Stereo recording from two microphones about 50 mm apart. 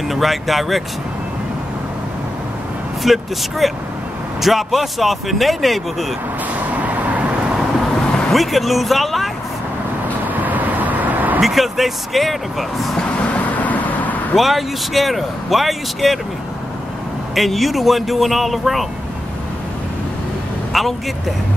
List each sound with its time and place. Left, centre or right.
0.1 s speech: centre
3.0 s speech: centre
6.7 s vehicle: right
8.3 s speech: centre
10.4 s vehicle: right
11.4 s speech: centre
13.3 s vehicle: left
14.3 s speech: centre
17.4 s speech: centre
20.7 s speech: centre